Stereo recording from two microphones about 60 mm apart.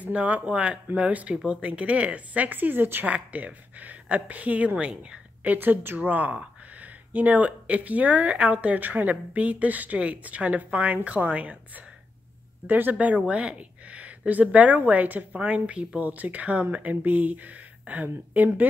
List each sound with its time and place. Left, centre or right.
0.0 s speech: right
3.1 s speech: right